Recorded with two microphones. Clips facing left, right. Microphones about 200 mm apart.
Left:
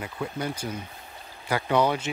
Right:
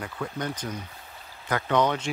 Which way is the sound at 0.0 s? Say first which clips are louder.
Left 1 dB; 10° left (ahead or behind).